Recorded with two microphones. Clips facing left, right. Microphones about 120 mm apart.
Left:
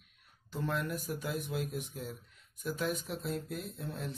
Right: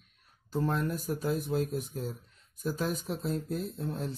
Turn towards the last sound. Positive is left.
turn(degrees=-35)  # may be behind; listen again after turning